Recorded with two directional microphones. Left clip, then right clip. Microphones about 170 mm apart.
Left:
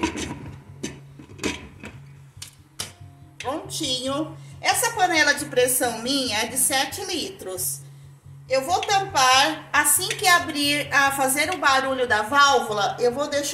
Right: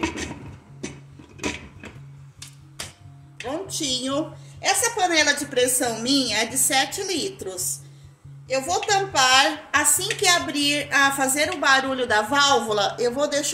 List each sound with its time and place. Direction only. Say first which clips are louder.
3.4 s a woman's voice: even; 45° right (ahead or behind)